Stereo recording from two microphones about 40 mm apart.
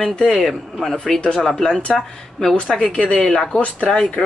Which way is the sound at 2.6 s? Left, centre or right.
Centre.